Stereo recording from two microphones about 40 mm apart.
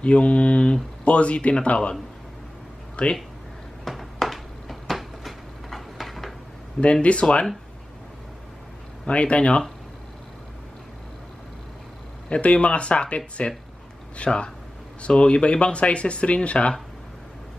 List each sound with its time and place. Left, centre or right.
0.0 s speech: left
3.0 s speech: left
3.8 s a sound: centre
6.8 s speech: left
9.0 s speech: left
12.3 s speech: left